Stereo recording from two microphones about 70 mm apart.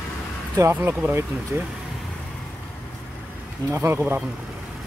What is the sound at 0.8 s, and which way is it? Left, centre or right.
Speech, right.